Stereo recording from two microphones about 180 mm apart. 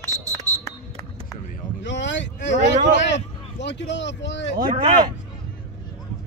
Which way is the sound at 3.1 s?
75° left (ahead or behind).